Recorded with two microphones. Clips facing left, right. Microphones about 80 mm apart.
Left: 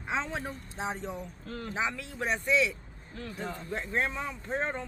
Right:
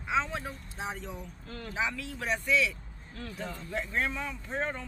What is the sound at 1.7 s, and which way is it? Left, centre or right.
Speech, left.